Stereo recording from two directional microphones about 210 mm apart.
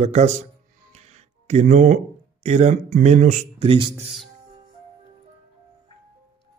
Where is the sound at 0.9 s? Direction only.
30° right (ahead or behind).